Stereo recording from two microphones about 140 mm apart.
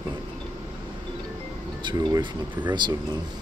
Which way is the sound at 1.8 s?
35° right (ahead or behind).